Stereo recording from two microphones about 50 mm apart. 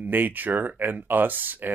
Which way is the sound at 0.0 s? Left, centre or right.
Right.